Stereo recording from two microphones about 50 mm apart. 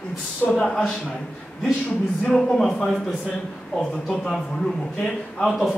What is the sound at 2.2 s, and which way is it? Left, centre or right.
Speech, centre.